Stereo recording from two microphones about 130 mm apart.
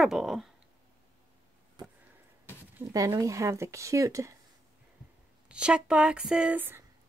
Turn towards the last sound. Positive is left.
turn(degrees=-15)  # may be behind; listen again after turning